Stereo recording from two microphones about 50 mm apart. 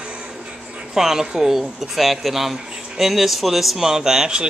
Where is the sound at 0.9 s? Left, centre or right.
Centre.